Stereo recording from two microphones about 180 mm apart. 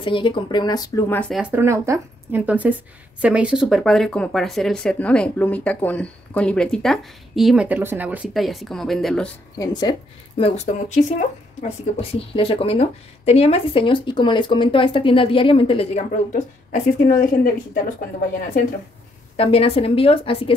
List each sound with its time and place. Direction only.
0.0 s speech: 25° left (ahead or behind); by 1.3 s 10° left (ahead or behind)
1.3 s speech: 10° right (ahead or behind)
9.6 s speech: 25° left (ahead or behind); by 17.2 s 50° left (ahead or behind)
19.3 s speech: 35° left (ahead or behind)